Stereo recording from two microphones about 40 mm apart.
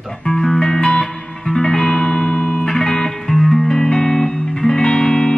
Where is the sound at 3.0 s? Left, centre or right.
Centre.